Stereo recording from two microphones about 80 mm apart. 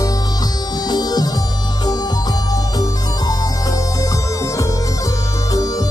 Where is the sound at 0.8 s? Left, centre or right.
Left.